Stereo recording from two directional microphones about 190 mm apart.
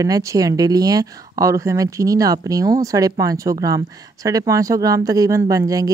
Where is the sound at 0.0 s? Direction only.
20° right (ahead or behind).